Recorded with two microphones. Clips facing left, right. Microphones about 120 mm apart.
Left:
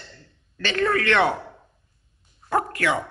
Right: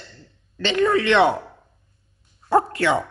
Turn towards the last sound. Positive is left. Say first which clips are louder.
# right 4 dB
turn(degrees=-25)  # may be behind; listen again after turning